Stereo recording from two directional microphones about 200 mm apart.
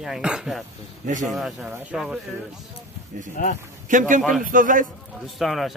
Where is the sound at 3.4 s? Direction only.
40° left (ahead or behind).